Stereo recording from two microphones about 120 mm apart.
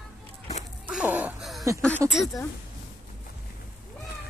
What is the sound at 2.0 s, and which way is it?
Speech, 5° right (ahead or behind).